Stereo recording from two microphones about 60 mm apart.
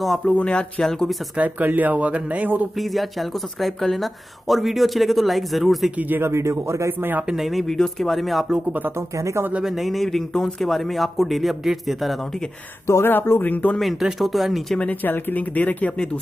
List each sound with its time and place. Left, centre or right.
0.3 s speech: left
0.8 s speech: centre
1.3 s speech: right
2.8 s speech: centre
5.9 s speech: right
6.3 s a man's voice: right
6.9 s speech: right
7.2 s speech: centre
8.9 s a man's voice: right
9.7 s speech: centre
12.8 s speech: left
13.1 s speech: left
13.7 s speech: centre
15.0 s speech: left